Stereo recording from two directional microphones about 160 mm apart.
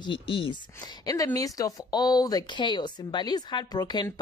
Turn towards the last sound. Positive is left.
turn(degrees=25)  # may be behind; listen again after turning